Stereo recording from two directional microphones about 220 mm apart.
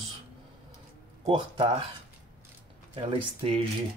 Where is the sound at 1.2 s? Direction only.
25° right (ahead or behind).